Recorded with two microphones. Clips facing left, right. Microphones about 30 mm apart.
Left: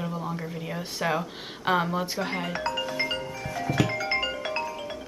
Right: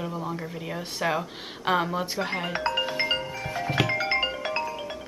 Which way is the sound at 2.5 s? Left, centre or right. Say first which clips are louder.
Right 2 dB; right.